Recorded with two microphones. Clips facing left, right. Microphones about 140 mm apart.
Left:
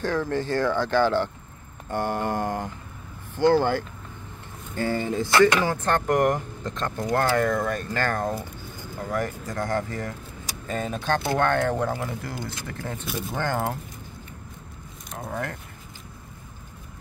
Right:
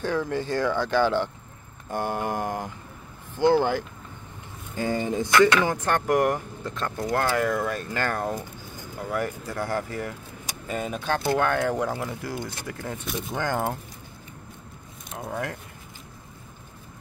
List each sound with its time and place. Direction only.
0.0 s speech: 15° right (ahead or behind)
13.0 s speech: 5° left (ahead or behind)
15.0 s a sound: 5° right (ahead or behind)